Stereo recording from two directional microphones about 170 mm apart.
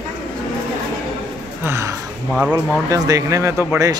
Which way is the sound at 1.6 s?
15° right (ahead or behind).